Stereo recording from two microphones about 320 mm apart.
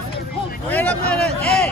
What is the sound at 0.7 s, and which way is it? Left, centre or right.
Speech, centre.